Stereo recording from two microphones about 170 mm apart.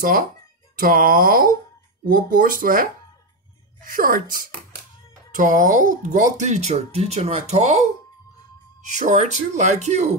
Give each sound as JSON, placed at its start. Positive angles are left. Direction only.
{"t": 0.0, "sound": "speech", "side_deg": -55}
{"t": 8.9, "sound": "speech", "side_deg": -45}